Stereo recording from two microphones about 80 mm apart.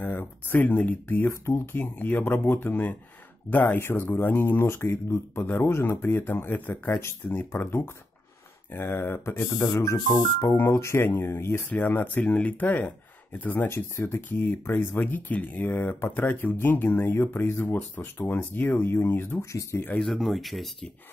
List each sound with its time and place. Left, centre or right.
0.0 s speech: left
9.5 s speech: left
10.7 s speech: left
13.7 s speech: left
20.1 s speech: centre